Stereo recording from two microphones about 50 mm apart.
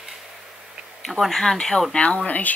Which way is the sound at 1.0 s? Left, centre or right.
Centre.